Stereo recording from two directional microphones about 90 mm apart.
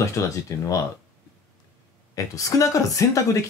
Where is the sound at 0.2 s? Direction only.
35° left (ahead or behind).